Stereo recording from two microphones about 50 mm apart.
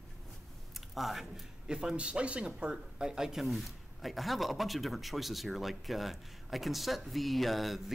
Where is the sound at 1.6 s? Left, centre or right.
Centre.